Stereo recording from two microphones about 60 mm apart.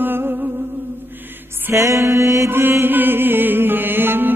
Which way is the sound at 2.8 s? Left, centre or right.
Right.